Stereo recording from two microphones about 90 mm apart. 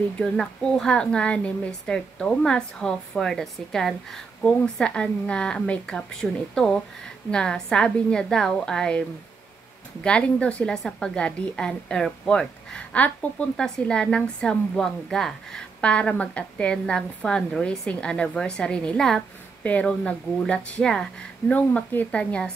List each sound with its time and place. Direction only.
0.2 s a woman's voice: 5° left (ahead or behind)
10.0 s a woman's voice: 10° left (ahead or behind)